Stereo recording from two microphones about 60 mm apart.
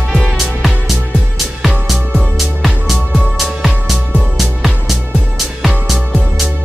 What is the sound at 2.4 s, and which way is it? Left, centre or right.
Music, centre.